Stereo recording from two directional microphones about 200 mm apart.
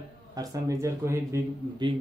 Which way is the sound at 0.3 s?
15° right (ahead or behind).